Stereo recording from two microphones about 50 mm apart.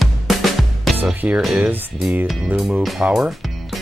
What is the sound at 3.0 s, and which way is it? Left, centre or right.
Speech, centre.